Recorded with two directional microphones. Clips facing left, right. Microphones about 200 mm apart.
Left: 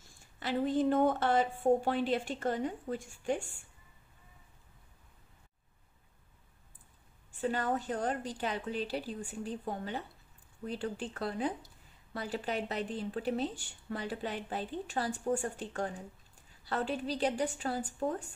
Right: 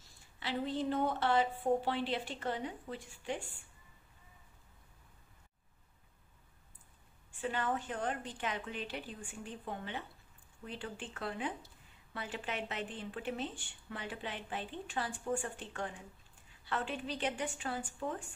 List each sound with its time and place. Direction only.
0.4 s a woman's voice: 45° left (ahead or behind)
7.3 s a woman's voice: 40° left (ahead or behind)